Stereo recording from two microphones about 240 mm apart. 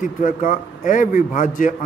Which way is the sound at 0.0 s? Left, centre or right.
Left.